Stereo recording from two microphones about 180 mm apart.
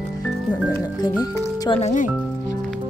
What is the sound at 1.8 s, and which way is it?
Speech, 40° left (ahead or behind).